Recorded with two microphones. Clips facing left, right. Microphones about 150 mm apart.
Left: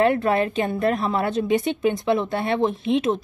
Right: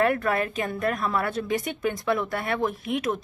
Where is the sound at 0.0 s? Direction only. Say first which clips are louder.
Left 4 dB; 25° left (ahead or behind).